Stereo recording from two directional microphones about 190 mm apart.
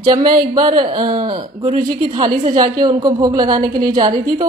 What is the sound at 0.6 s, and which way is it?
A woman's voice, 25° right (ahead or behind).